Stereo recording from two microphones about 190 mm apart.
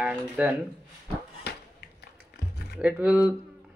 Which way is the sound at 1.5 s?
60° left (ahead or behind).